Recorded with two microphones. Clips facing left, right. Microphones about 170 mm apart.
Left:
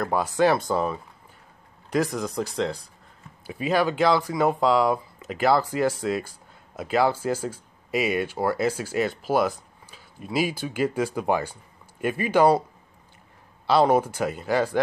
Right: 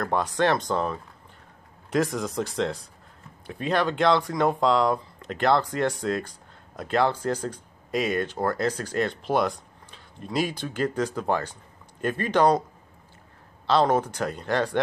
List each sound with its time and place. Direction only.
0.0 s speech: 5° left (ahead or behind)
13.7 s speech: 10° left (ahead or behind)